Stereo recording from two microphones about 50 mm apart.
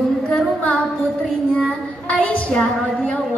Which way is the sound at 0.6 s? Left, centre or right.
Left.